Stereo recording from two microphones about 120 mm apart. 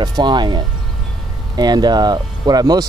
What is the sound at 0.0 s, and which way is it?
Speech, 35° right (ahead or behind).